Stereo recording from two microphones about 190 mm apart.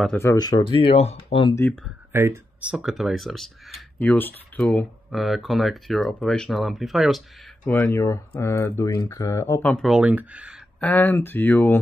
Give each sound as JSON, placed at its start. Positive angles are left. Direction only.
{"t": 0.0, "sound": "speech", "side_deg": 10}
{"t": 1.5, "sound": "speech", "side_deg": 10}
{"t": 2.1, "sound": "speech", "side_deg": -15}
{"t": 10.8, "sound": "speech", "side_deg": 10}